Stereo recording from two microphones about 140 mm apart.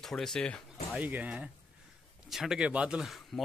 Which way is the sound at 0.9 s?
10° right (ahead or behind).